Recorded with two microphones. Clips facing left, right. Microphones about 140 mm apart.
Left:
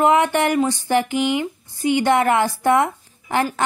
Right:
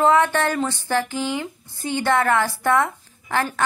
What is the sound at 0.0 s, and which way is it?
A woman's voice, 15° left (ahead or behind).